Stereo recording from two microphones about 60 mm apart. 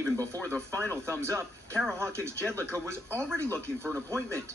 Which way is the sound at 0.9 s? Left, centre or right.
Right.